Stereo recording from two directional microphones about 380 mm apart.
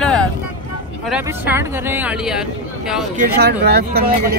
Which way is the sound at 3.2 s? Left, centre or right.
Right.